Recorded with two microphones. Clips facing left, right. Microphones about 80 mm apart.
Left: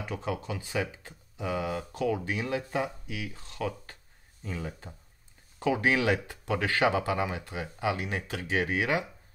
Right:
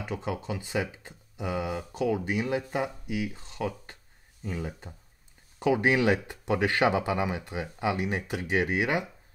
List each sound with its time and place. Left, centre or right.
0.0 s speech: centre